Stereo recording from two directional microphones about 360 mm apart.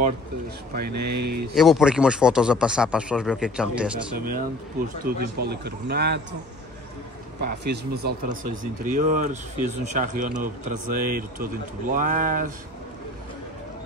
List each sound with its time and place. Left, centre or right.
0.7 s speech: right
1.5 s a man's voice: centre
4.2 s speech: right
7.4 s speech: right